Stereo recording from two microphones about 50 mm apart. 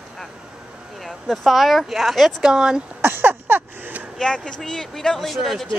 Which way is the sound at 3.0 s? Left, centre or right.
Right.